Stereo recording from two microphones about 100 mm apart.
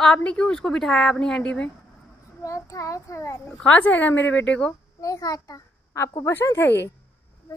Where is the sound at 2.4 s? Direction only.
30° left (ahead or behind).